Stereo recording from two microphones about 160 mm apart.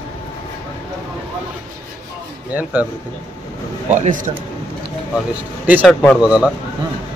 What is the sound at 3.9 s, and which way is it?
Speech, 50° right (ahead or behind).